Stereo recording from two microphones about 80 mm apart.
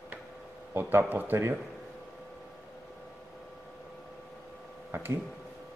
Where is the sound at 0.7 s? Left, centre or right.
Right.